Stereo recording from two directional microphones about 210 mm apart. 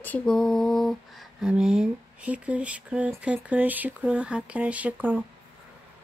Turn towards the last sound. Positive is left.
turn(degrees=-10)  # may be behind; listen again after turning